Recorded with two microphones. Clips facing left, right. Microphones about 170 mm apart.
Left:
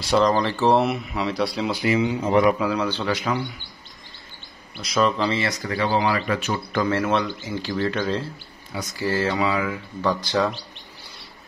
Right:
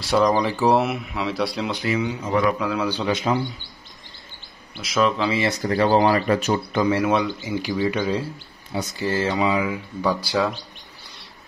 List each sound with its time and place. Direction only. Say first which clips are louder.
0.2 s speech: right 2 dB; 15° right (ahead or behind)
1.9 s speech: left 4 dB; 25° left (ahead or behind)
2.6 s speech: even; 5° right (ahead or behind)
3.1 s speech: right 2 dB; 25° right (ahead or behind)
4.8 s speech: even; centre (ahead or behind)
5.7 s speech: right 5 dB; 40° right (ahead or behind)
6.7 s speech: right 1 dB; 15° right (ahead or behind)
8.7 s speech: right 1 dB; 20° right (ahead or behind)